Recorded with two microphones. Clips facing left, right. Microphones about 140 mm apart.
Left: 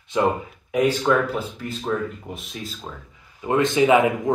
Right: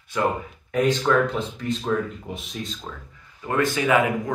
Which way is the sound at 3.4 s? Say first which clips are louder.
Left 4 dB; 20° left (ahead or behind).